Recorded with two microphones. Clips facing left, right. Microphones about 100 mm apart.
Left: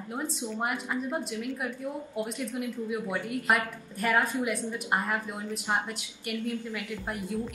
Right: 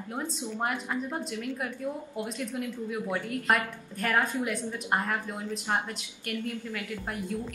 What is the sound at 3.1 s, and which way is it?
A woman's voice, 5° left (ahead or behind).